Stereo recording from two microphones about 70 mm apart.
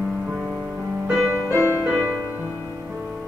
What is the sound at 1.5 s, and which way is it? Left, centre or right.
Music, left.